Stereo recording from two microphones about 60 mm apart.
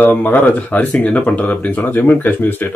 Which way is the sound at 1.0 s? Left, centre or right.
Left.